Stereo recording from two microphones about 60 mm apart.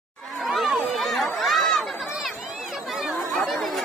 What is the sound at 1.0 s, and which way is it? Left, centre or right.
Chatter, centre.